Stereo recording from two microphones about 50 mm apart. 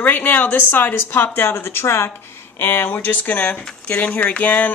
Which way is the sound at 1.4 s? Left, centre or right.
Left.